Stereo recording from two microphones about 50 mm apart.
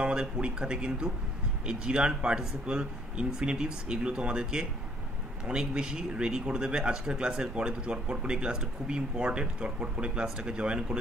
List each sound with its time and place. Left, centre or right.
0.0 s speech: centre